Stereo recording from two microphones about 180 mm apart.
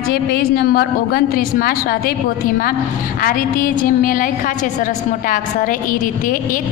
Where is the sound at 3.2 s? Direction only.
50° left (ahead or behind).